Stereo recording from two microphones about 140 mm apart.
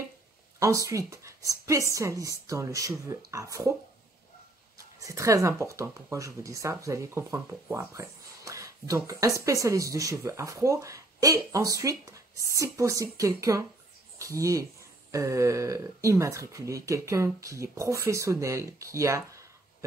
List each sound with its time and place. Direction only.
0.6 s speech: 20° right (ahead or behind)
4.7 s speech: 20° right (ahead or behind)